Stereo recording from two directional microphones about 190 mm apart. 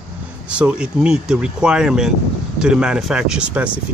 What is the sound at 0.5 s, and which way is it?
Speech, 5° right (ahead or behind).